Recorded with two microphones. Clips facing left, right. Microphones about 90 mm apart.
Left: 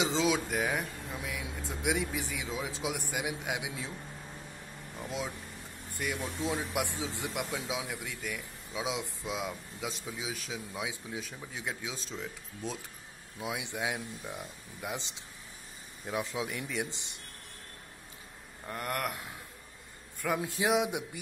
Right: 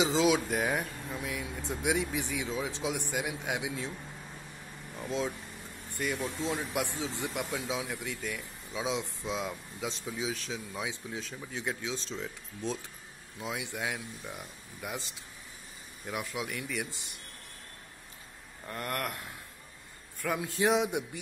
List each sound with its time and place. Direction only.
0.0 s speech: 5° right (ahead or behind)
6.2 s speech: 10° left (ahead or behind)
7.5 s speech: centre (ahead or behind)
13.4 s speech: 15° left (ahead or behind)
16.1 s speech: 20° left (ahead or behind)
18.7 s speech: 10° left (ahead or behind)
20.4 s speech: 10° left (ahead or behind)